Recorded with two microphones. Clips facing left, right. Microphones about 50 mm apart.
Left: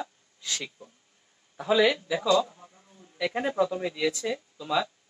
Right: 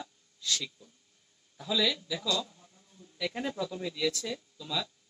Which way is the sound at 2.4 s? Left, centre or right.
Left.